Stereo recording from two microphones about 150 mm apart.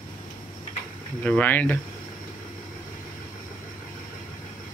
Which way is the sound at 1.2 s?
10° left (ahead or behind).